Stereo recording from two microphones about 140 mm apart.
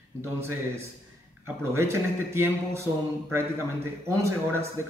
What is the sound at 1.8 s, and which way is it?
Speech, 20° right (ahead or behind).